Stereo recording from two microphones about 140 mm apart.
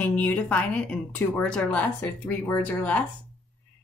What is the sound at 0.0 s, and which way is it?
A woman's voice, 10° left (ahead or behind).